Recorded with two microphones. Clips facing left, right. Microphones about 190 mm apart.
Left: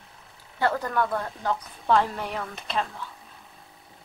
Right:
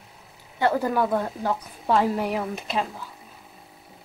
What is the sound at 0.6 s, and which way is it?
A woman's voice, 10° right (ahead or behind).